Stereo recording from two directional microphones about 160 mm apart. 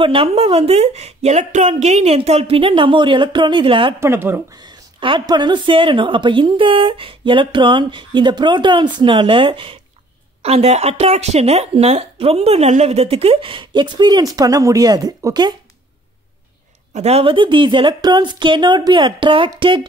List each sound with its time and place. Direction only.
0.0 s speech: 35° right (ahead or behind)
4.0 s speech: 15° right (ahead or behind)
4.6 s speech: 30° right (ahead or behind)
16.9 s speech: 40° right (ahead or behind)